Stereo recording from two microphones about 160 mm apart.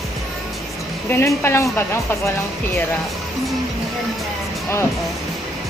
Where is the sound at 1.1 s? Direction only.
15° left (ahead or behind).